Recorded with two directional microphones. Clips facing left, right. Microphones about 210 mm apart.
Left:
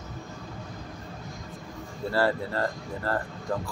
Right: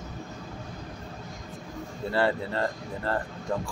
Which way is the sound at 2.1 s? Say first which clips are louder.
Even; 20° right (ahead or behind).